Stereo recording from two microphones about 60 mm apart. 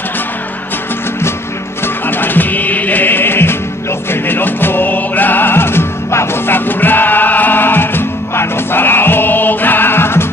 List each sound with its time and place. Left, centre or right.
2.0 s music: left